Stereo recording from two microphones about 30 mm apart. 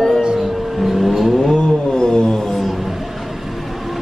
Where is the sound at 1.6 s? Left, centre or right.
Left.